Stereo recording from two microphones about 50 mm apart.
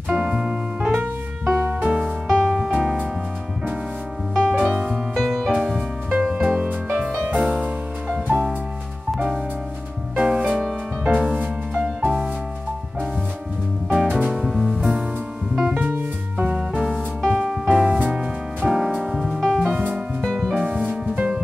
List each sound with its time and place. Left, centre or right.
0.1 s piano: right
1.4 s music: right
1.9 s music: centre
4.3 s music: centre
5.8 s music: centre
8.1 s music: centre
10.2 s music: centre
14.0 s music: right
14.3 s music: centre
15.6 s music: right
16.3 s music: right